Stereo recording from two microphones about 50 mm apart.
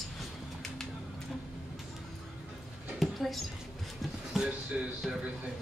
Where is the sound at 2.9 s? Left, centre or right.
Centre.